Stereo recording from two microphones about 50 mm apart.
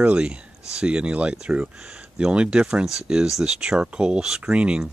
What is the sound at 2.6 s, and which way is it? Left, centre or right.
Speech, centre.